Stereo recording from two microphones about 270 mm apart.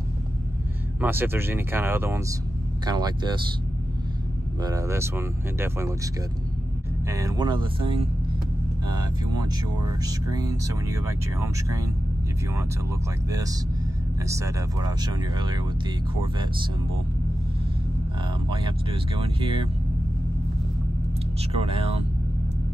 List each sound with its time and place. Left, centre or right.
1.0 s speech: centre
4.6 s speech: centre
7.1 s speech: centre
14.2 s speech: centre
18.5 s speech: centre
21.5 s speech: right